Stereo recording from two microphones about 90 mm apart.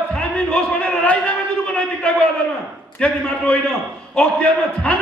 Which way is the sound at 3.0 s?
15° left (ahead or behind).